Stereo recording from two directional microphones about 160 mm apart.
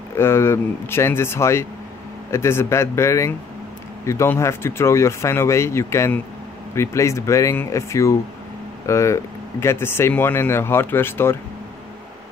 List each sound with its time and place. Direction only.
0.1 s speech: 15° left (ahead or behind)